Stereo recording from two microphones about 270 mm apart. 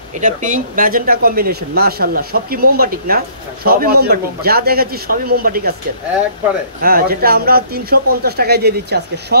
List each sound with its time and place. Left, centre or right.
0.2 s speech: right
6.8 s speech: right